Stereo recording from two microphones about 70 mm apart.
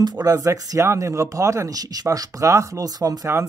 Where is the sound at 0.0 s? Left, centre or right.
Right.